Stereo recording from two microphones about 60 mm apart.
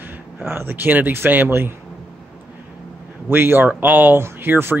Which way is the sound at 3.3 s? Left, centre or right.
Right.